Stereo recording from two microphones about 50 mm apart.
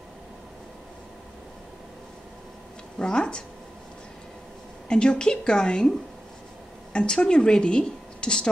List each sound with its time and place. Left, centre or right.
3.0 s a woman's voice: centre
4.8 s a woman's voice: centre